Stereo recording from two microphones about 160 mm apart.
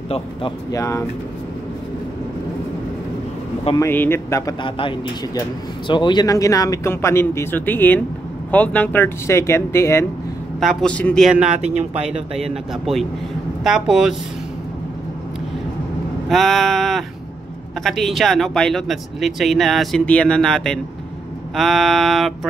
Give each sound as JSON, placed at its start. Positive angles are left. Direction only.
{"t": 0.7, "sound": "speech", "side_deg": 20}
{"t": 3.7, "sound": "speech", "side_deg": 15}
{"t": 4.6, "sound": "speech", "side_deg": 30}
{"t": 10.6, "sound": "speech", "side_deg": 0}
{"t": 16.3, "sound": "speech", "side_deg": 0}